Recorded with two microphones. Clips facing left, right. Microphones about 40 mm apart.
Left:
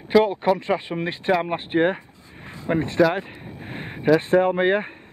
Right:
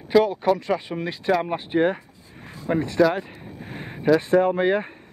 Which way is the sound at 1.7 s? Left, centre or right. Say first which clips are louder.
Left 1 dB; left.